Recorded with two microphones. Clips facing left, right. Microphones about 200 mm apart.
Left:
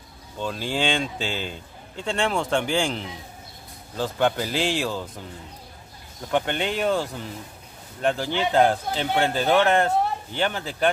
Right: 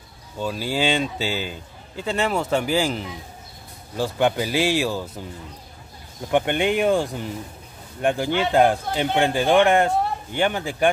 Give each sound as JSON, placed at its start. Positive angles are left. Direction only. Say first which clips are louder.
{"t": 0.4, "sound": "a man's voice", "louder": "right 2 dB", "side_deg": -5}
{"t": 6.3, "sound": "a man's voice", "louder": "right 4 dB", "side_deg": -15}